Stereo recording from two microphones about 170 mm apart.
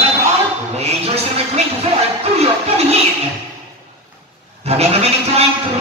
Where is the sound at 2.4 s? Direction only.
35° right (ahead or behind).